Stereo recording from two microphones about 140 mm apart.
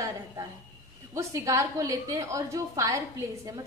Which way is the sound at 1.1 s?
25° right (ahead or behind).